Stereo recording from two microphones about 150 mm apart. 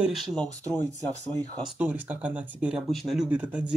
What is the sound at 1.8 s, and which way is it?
Speech, 10° right (ahead or behind).